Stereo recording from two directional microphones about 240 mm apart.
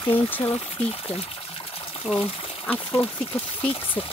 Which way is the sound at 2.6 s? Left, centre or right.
Centre.